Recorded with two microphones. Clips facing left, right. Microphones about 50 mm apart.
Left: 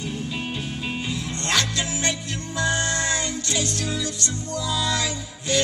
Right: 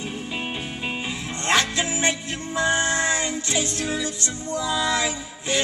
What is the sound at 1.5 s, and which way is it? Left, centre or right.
Music, right.